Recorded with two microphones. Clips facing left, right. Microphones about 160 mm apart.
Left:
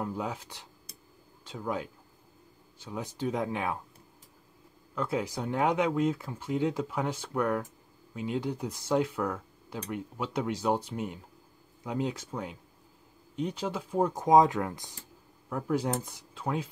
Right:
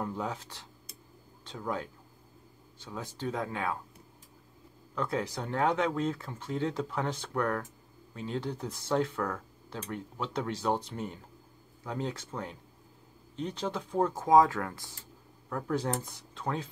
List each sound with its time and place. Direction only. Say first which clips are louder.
0.0 s speech: left 1 dB; 10° left (ahead or behind)
4.9 s speech: left 1 dB; 10° left (ahead or behind)